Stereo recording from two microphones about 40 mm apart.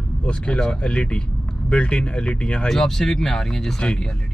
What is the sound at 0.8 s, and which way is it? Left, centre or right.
Speech, left.